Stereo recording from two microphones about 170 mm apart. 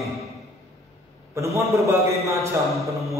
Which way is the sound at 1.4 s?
15° right (ahead or behind).